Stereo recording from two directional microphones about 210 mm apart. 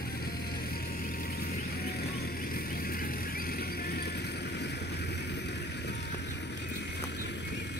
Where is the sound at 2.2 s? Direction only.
45° left (ahead or behind).